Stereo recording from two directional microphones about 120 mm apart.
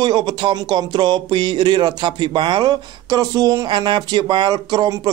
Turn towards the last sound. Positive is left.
turn(degrees=-35)  # may be behind; listen again after turning